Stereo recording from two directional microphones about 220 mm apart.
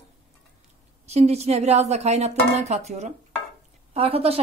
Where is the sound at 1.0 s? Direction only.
30° right (ahead or behind).